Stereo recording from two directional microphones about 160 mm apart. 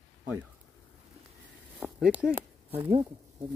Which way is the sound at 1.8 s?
5° right (ahead or behind).